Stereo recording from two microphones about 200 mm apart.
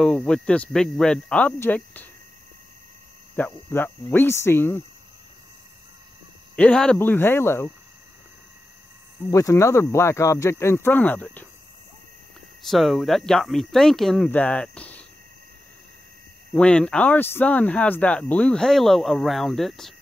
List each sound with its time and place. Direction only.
0.0 s speech: 5° left (ahead or behind)
3.3 s speech: 10° left (ahead or behind)
6.5 s speech: 5° left (ahead or behind)
9.2 s speech: 15° left (ahead or behind)
12.6 s speech: centre (ahead or behind)
16.5 s speech: 5° left (ahead or behind)